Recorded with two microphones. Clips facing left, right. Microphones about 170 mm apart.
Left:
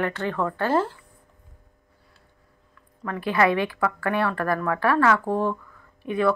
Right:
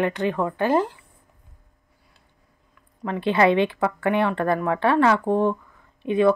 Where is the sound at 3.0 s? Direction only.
25° right (ahead or behind).